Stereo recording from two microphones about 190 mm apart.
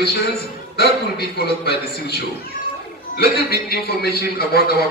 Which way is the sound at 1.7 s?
60° left (ahead or behind).